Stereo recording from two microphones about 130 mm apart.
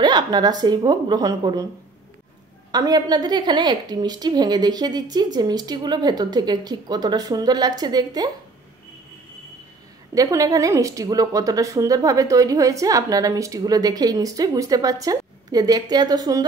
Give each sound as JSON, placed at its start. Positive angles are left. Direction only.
{"t": 0.0, "sound": "a woman's voice", "side_deg": -30}
{"t": 2.7, "sound": "a woman's voice", "side_deg": -30}
{"t": 10.1, "sound": "speech", "side_deg": -25}